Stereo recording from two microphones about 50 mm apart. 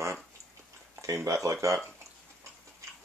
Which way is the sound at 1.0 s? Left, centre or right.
Right.